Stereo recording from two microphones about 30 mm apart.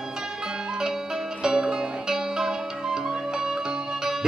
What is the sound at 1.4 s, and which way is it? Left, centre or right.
Music, right.